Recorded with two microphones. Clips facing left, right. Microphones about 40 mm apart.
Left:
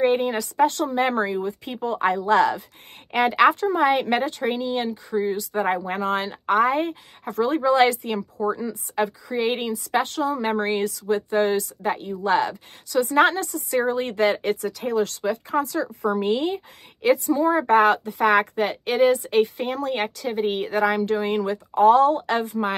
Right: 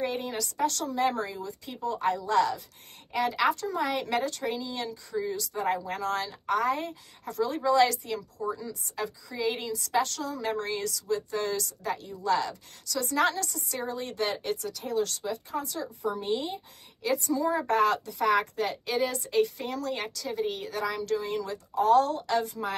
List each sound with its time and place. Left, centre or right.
0.0 s speech: left
3.6 s speech: left
5.9 s speech: left
10.0 s speech: left
17.3 s speech: left